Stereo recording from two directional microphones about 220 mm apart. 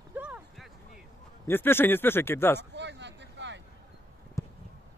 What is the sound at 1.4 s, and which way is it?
Speech, 10° left (ahead or behind).